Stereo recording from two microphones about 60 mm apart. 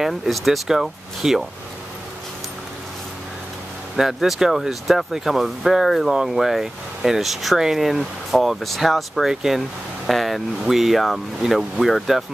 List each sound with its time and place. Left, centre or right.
0.0 s speech: centre
3.9 s speech: centre